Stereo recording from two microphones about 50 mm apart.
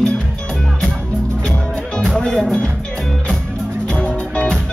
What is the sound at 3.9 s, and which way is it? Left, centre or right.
Music, left.